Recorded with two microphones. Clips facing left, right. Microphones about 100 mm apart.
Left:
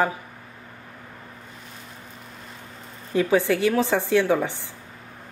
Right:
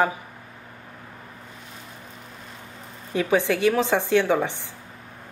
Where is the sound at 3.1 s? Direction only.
20° right (ahead or behind).